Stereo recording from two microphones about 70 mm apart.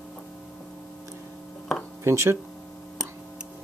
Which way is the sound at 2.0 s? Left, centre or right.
Right.